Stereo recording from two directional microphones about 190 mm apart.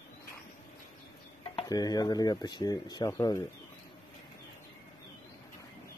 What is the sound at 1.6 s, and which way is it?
Speech, 20° left (ahead or behind).